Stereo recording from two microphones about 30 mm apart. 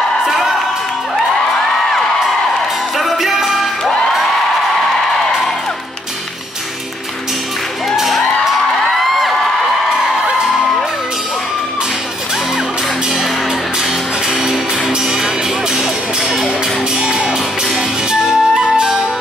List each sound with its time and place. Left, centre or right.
0.2 s music: centre
3.0 s music: centre
7.9 s music: centre
18.1 s flute: right